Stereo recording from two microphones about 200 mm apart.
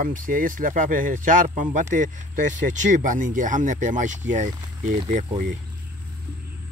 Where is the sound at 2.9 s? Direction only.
40° right (ahead or behind).